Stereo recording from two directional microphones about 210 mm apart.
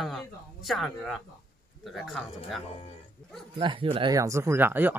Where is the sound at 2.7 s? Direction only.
30° left (ahead or behind).